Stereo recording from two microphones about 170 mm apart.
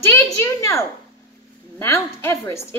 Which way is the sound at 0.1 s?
15° left (ahead or behind).